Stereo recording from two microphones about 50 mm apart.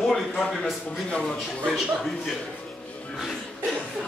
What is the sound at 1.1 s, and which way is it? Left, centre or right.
Speech, left.